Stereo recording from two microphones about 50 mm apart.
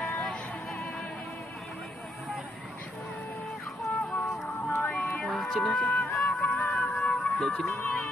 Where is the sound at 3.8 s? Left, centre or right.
Left.